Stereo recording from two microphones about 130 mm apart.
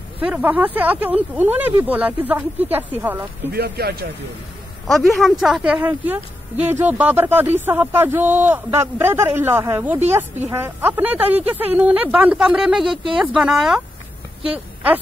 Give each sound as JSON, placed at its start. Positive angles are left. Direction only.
{"t": 0.2, "sound": "a woman's voice", "side_deg": -10}
{"t": 4.8, "sound": "a woman's voice", "side_deg": 0}